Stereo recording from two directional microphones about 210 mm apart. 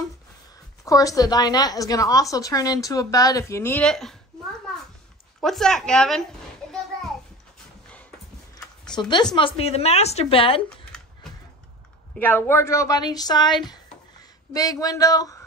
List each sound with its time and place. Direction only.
0.8 s a woman's voice: 15° left (ahead or behind)
5.4 s a woman's voice: centre (ahead or behind)
8.9 s speech: 20° left (ahead or behind)
12.2 s a woman's voice: 10° left (ahead or behind)